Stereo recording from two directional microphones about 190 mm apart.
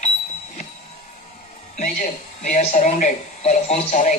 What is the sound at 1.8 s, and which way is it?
Speech, 40° left (ahead or behind).